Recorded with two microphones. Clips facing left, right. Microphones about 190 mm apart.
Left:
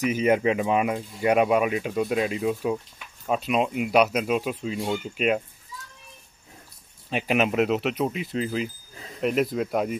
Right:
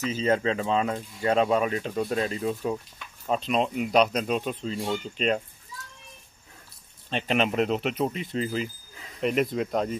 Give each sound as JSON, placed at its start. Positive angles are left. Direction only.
{"t": 0.0, "sound": "speech", "side_deg": 15}
{"t": 7.1, "sound": "speech", "side_deg": 5}